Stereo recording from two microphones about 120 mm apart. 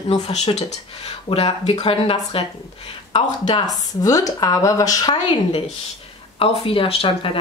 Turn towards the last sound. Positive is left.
turn(degrees=50)  # may be behind; listen again after turning